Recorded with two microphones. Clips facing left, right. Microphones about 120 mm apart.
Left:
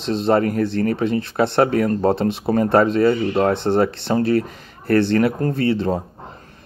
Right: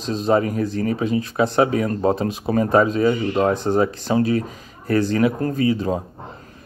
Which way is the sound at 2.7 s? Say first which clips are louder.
Left 1 dB; 65° left (ahead or behind).